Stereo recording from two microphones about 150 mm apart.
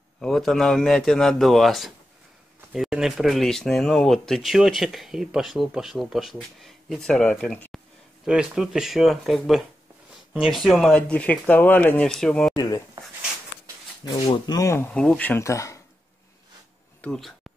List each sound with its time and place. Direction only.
0.2 s speech: centre (ahead or behind)
8.3 s speech: 5° right (ahead or behind)
12.5 s a sound: 25° left (ahead or behind)
14.0 s speech: 30° left (ahead or behind)
14.6 s speech: 20° left (ahead or behind)
14.9 s speech: 5° left (ahead or behind)
17.0 s speech: 5° left (ahead or behind)